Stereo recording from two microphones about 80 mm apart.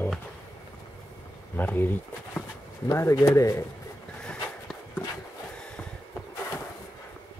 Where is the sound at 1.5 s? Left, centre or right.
Left.